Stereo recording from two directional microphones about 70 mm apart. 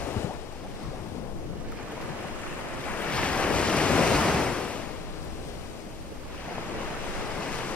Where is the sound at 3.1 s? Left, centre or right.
Centre.